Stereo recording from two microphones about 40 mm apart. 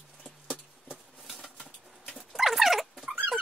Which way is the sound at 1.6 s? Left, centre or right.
Left.